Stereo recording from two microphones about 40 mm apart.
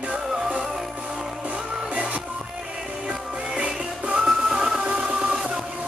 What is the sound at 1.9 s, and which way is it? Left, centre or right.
Music, right.